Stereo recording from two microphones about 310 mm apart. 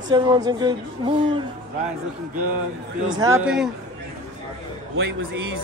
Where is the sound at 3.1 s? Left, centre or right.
Centre.